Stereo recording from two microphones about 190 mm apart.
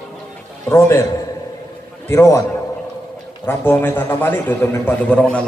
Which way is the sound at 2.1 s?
15° left (ahead or behind).